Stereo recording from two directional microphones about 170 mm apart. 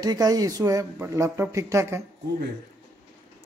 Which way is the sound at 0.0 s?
25° right (ahead or behind).